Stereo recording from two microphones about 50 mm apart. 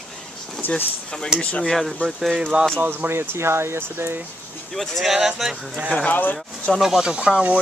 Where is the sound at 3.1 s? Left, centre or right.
Right.